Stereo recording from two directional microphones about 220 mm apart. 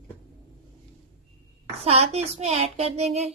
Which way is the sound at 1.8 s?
30° right (ahead or behind).